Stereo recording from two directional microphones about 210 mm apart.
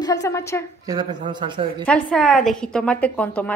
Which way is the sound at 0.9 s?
20° right (ahead or behind).